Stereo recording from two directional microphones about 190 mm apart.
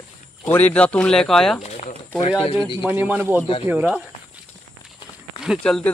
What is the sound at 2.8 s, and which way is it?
Speech, 10° right (ahead or behind).